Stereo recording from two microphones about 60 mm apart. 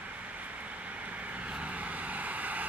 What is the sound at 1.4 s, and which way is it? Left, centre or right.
Vehicle, right.